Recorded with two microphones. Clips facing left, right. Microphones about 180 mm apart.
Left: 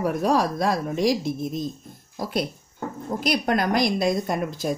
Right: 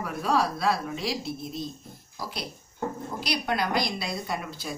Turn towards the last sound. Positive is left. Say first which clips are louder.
# left 8 dB
turn(degrees=50)  # may be behind; listen again after turning